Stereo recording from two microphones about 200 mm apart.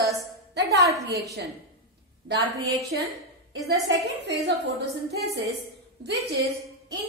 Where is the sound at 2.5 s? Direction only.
15° right (ahead or behind).